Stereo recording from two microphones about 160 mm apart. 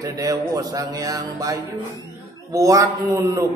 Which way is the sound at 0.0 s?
20° right (ahead or behind).